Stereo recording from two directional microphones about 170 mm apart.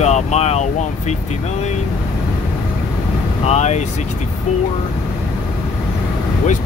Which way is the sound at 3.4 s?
40° left (ahead or behind).